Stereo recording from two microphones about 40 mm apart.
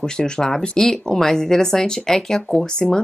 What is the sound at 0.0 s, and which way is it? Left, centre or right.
Speech, centre.